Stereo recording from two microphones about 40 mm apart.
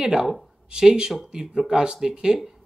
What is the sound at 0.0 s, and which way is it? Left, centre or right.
Speech, centre.